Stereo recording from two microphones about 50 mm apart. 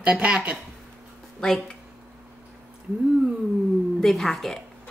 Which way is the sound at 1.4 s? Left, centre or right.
Centre.